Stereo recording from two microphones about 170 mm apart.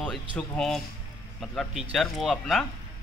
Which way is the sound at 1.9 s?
Centre (ahead or behind).